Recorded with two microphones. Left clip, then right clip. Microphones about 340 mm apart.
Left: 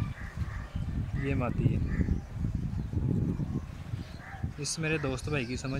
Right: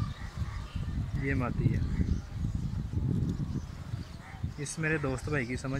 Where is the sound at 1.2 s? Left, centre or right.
Centre.